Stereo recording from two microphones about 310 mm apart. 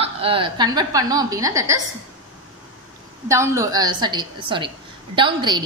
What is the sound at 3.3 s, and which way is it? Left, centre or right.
A woman's voice, centre.